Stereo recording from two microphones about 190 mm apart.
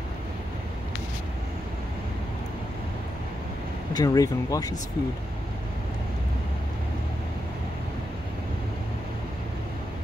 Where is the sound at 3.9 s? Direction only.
20° left (ahead or behind).